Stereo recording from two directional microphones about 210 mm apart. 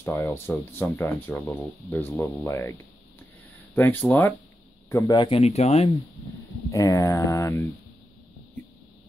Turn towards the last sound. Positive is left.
turn(degrees=15)  # may be behind; listen again after turning